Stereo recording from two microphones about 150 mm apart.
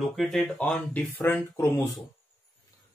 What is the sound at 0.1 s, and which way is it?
Speech, centre (ahead or behind).